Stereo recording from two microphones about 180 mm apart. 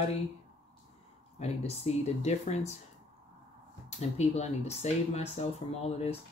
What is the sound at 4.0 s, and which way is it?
Speech, 40° left (ahead or behind).